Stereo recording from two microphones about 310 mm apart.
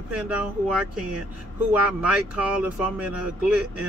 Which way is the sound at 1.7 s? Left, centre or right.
Centre.